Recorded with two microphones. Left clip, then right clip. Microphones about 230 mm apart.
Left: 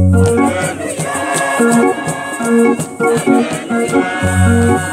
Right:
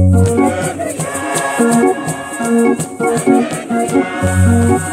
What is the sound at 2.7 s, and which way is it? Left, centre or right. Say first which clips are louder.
Music: left 1 dB; right.